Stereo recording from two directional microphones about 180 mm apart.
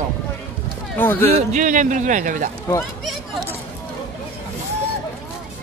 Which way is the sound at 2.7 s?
15° left (ahead or behind).